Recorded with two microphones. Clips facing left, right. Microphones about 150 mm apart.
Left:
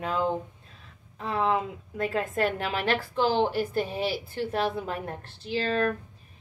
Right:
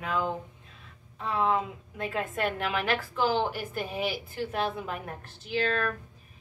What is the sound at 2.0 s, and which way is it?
A woman's voice, 40° left (ahead or behind).